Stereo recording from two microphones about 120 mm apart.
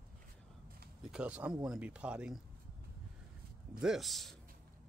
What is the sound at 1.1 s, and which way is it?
Speech, 10° right (ahead or behind).